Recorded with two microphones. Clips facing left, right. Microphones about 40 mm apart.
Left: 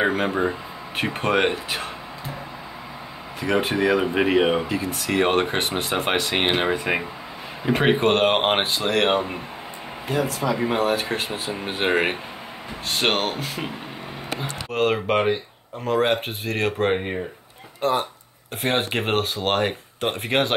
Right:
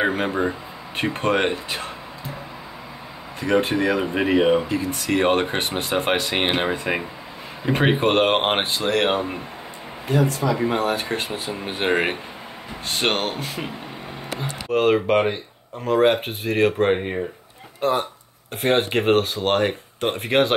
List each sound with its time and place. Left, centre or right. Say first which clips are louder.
0.0 s speech: even; centre
3.3 s speech: right 2 dB; centre
14.7 s speech: right 3 dB; centre